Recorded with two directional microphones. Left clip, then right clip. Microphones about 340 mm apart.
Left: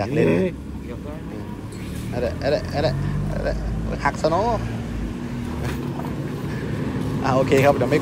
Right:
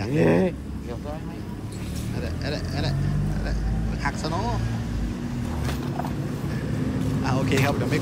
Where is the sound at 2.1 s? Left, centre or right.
Centre.